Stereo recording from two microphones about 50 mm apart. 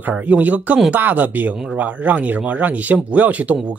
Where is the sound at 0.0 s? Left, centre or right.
Right.